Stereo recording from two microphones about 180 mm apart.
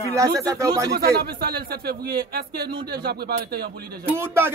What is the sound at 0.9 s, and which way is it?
A man's voice, 60° right (ahead or behind).